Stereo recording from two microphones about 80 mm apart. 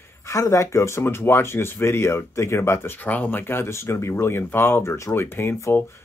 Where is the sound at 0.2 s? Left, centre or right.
Left.